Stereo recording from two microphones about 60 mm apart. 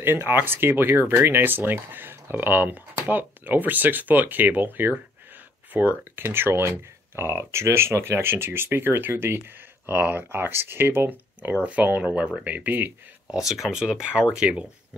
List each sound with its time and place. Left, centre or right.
0.0 s speech: right
13.3 s speech: centre